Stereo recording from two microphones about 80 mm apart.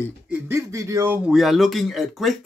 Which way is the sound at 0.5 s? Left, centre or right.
Right.